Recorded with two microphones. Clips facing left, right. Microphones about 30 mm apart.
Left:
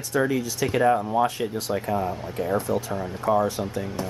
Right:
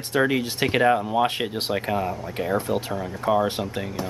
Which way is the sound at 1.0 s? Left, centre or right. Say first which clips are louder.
Even; right.